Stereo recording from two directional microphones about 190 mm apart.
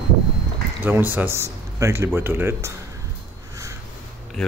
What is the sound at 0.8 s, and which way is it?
Speech, 10° right (ahead or behind).